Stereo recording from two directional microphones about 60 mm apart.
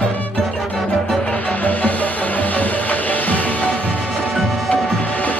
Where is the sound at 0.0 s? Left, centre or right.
Left.